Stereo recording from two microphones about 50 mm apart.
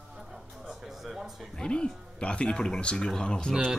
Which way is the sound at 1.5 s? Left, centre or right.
Centre.